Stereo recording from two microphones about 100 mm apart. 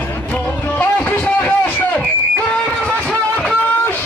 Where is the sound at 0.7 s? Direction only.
15° left (ahead or behind).